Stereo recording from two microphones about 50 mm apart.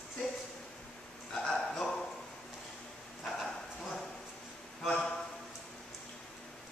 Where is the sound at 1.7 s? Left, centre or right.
Centre.